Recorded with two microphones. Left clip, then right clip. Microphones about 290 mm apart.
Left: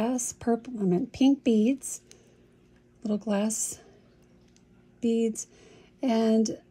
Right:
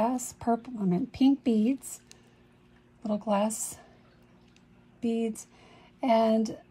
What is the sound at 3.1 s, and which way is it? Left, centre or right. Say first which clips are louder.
Speech: right 2 dB; centre.